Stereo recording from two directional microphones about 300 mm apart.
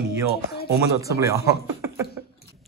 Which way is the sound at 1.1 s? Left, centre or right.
Centre.